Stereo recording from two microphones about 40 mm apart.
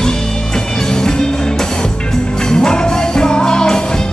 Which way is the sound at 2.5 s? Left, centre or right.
Centre.